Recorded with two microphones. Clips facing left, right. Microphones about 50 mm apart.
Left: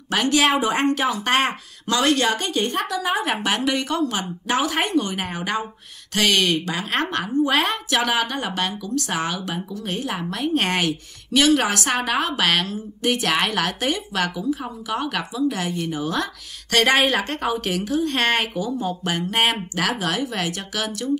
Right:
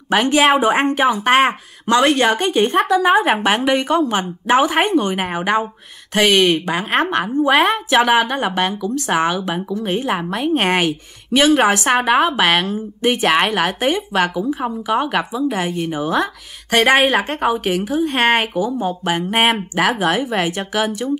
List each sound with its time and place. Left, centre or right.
0.1 s a woman's voice: right